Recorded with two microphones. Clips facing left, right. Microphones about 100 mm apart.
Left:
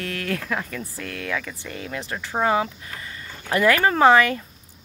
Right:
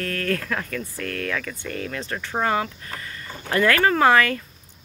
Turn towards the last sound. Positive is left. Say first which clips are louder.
# left 2 dB
turn(degrees=20)  # may be behind; listen again after turning